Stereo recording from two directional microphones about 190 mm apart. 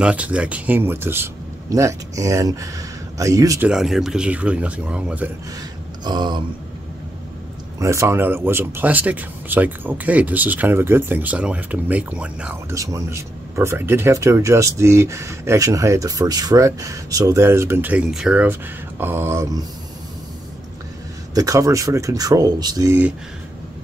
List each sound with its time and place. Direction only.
0.0 s speech: 5° right (ahead or behind)
3.6 s speech: centre (ahead or behind)
6.0 s a sound: 25° right (ahead or behind)
7.8 s speech: 15° right (ahead or behind)
12.7 s speech: 15° right (ahead or behind)
21.4 s speech: 15° right (ahead or behind)